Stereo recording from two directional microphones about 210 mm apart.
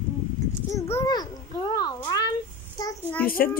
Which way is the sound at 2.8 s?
10° left (ahead or behind).